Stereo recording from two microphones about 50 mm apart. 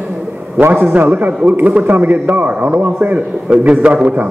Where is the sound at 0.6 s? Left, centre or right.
Right.